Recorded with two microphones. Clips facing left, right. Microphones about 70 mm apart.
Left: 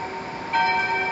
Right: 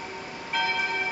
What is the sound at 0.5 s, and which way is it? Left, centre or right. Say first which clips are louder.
Church bell: left 7 dB; left.